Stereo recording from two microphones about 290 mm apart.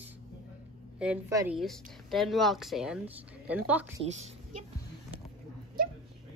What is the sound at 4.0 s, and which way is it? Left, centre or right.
Speech, right.